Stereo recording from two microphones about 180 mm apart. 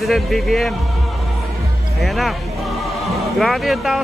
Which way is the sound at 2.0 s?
Centre (ahead or behind).